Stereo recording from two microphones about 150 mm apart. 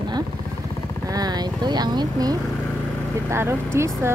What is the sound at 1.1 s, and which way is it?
Speech, 25° right (ahead or behind).